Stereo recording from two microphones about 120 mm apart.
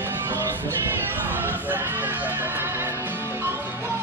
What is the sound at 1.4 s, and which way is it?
Music, 15° right (ahead or behind).